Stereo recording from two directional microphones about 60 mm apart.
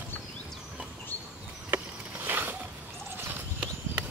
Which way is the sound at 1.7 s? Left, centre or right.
Right.